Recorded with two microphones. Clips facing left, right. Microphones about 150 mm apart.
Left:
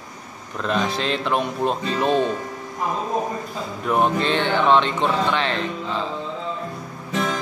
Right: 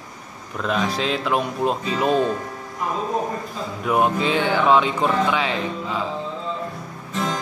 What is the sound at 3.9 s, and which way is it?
Speech, 10° right (ahead or behind).